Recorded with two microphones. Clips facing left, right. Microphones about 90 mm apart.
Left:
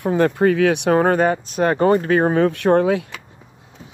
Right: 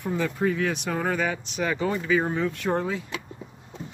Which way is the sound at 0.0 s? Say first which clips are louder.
Left 9 dB; 70° left (ahead or behind).